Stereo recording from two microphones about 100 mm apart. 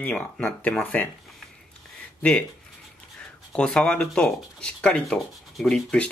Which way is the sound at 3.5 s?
10° left (ahead or behind).